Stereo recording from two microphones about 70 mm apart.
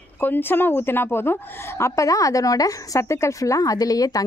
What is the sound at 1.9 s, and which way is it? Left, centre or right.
A woman's voice, left.